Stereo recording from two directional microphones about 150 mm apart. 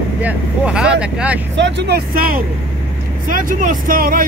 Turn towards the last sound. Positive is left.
turn(degrees=-70)  # may be behind; listen again after turning